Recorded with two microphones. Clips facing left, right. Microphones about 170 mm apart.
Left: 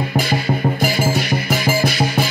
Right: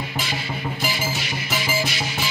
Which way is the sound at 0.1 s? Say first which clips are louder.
Left 10 dB; 45° left (ahead or behind).